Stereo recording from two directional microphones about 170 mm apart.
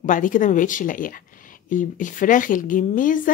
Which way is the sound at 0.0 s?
50° left (ahead or behind).